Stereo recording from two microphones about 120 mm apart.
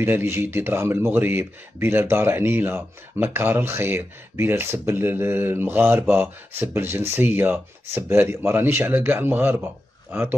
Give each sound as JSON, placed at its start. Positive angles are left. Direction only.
{"t": 0.0, "sound": "a man's voice", "side_deg": -20}